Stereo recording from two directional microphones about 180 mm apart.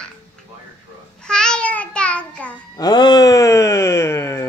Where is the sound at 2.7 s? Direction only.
25° left (ahead or behind).